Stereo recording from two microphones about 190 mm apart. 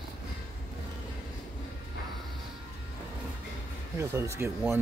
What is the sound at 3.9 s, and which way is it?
Speech, 15° right (ahead or behind).